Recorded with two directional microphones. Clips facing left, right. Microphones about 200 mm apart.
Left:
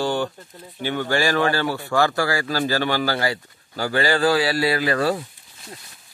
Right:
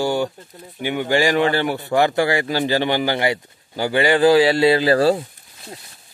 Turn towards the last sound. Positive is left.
turn(degrees=-30)  # may be behind; listen again after turning